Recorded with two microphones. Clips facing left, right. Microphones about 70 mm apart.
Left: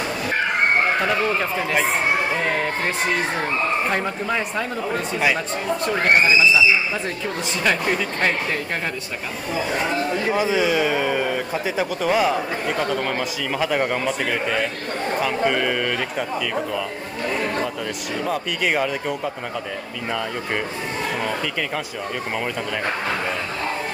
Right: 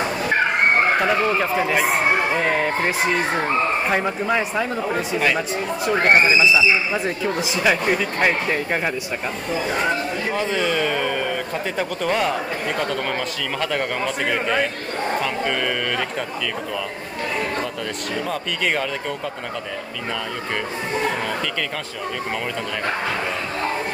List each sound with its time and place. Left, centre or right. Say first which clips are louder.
1.0 s speech: right 2 dB; centre
3.9 s speech: right 3 dB; centre
6.0 s speech: even; centre
10.3 s speech: left 2 dB; centre
15.2 s speech: left 2 dB; centre
18.2 s speech: left 2 dB; centre